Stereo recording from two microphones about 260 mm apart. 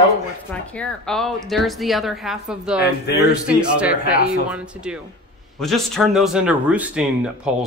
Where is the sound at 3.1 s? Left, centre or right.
Left.